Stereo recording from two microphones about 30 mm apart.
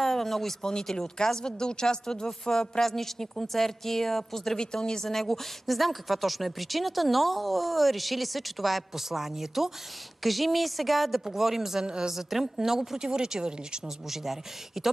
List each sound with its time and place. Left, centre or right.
0.0 s speech: centre
0.6 s speech: left
2.8 s a woman's voice: centre
4.6 s speech: left
5.1 s a woman's voice: centre
9.1 s a woman's voice: centre
11.1 s speech: centre
11.8 s speech: right
12.1 s speech: centre
13.0 s speech: right
13.8 s speech: centre